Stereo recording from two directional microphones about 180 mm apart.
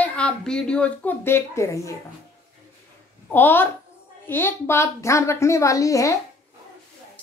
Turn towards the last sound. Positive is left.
turn(degrees=20)  # may be behind; listen again after turning